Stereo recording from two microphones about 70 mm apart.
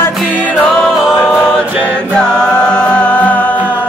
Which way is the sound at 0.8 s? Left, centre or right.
Centre.